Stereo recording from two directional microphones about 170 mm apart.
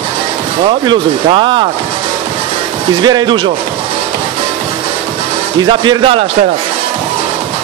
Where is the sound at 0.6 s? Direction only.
30° right (ahead or behind).